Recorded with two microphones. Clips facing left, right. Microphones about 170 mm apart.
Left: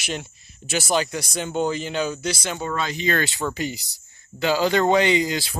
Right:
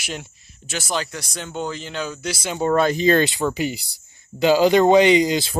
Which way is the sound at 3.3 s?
10° right (ahead or behind).